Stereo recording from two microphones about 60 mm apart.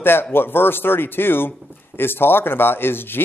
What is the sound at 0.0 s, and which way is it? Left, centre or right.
Speech, left.